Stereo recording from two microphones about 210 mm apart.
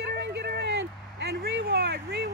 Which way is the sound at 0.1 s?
50° right (ahead or behind).